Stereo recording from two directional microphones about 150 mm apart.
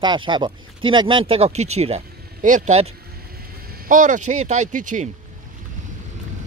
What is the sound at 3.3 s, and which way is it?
Speech, 90° right.